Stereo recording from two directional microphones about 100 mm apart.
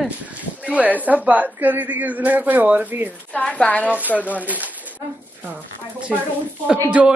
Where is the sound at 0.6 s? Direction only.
15° right (ahead or behind).